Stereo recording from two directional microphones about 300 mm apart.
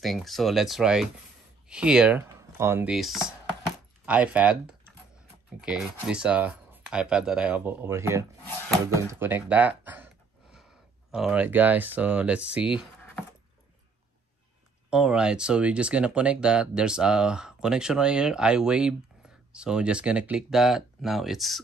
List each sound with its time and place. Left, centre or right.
0.0 s speech: centre
11.1 s speech: centre
14.9 s speech: centre